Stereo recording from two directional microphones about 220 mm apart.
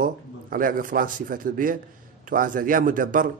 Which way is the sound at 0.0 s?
40° right (ahead or behind).